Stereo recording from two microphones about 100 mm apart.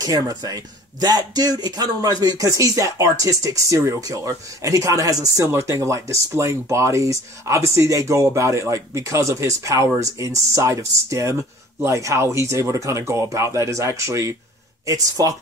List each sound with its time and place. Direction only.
0.0 s speech: 40° right (ahead or behind)